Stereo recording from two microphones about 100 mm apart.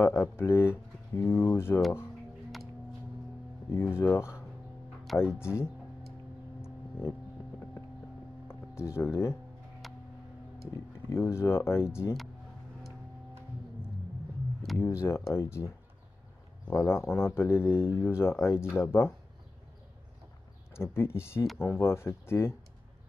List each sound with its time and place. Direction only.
0.0 s speech: 25° left (ahead or behind)
3.7 s speech: 25° left (ahead or behind)
5.1 s speech: centre (ahead or behind)
5.4 s speech: 25° left (ahead or behind)
6.6 s vehicle: 25° left (ahead or behind)
8.5 s speech: 25° left (ahead or behind)
11.1 s speech: 25° left (ahead or behind)
14.8 s speech: 30° left (ahead or behind)
20.7 s speech: 25° left (ahead or behind)